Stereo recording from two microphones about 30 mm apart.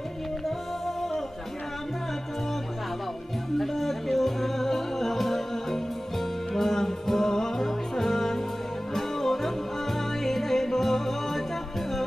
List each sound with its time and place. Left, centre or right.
3.5 s music: centre